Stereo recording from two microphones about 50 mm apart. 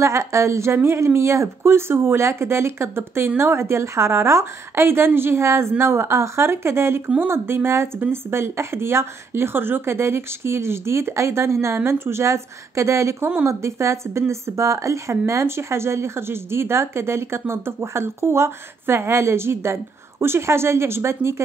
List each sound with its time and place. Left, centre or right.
0.0 s a woman's voice: right
0.7 s speech: right